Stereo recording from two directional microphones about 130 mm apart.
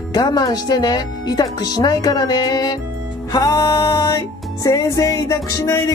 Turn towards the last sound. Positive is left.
turn(degrees=25)  # may be behind; listen again after turning